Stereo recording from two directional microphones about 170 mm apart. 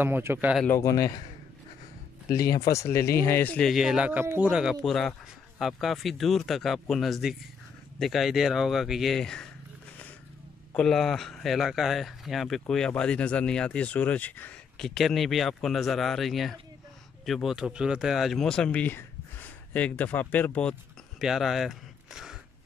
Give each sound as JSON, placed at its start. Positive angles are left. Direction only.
{"t": 0.0, "sound": "speech", "side_deg": -15}
{"t": 0.7, "sound": "a man's voice", "side_deg": 20}
{"t": 2.2, "sound": "speech", "side_deg": 20}
{"t": 10.8, "sound": "speech", "side_deg": 0}
{"t": 21.2, "sound": "speech", "side_deg": 0}